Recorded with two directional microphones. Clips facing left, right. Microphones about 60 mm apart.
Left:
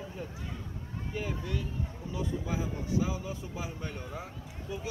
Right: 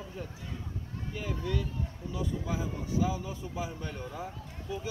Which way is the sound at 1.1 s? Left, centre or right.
Centre.